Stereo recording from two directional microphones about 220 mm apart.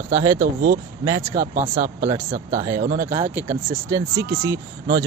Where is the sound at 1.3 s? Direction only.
35° right (ahead or behind).